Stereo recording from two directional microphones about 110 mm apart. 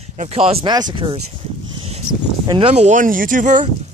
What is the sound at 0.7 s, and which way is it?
Speech, 40° right (ahead or behind).